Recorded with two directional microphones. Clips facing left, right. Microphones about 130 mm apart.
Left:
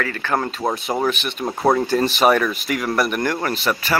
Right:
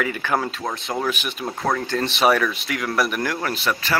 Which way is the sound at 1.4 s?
20° left (ahead or behind).